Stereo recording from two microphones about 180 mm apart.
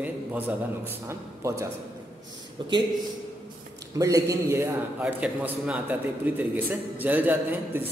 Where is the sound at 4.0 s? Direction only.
15° right (ahead or behind).